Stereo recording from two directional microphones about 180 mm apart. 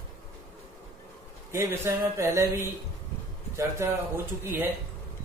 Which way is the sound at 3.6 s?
15° right (ahead or behind).